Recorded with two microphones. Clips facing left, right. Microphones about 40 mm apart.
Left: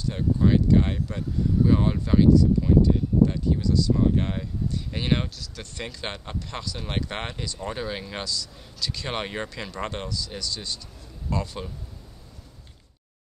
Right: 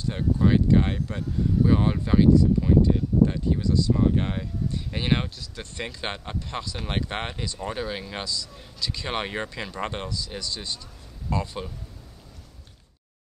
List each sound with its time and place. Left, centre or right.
0.0 s speech: centre
5.4 s speech: centre